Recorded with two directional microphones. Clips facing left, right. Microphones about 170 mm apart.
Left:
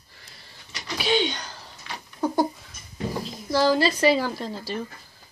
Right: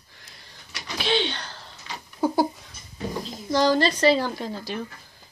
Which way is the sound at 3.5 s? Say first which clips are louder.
Even; 5° left (ahead or behind).